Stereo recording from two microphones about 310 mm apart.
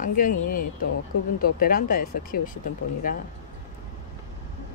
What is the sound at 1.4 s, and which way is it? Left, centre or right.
Speech, left.